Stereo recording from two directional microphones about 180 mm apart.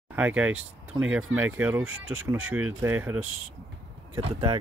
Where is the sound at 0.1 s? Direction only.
10° right (ahead or behind).